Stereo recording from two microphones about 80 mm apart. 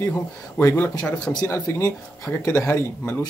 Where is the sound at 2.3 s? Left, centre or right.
Centre.